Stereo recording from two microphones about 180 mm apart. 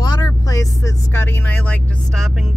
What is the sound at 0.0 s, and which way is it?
Vehicle, 20° left (ahead or behind).